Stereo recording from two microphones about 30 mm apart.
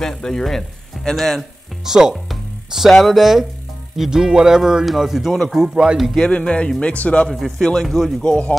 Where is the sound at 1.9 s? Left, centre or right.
Centre.